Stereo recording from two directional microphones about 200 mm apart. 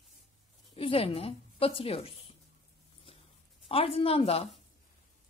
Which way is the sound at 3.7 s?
30° left (ahead or behind).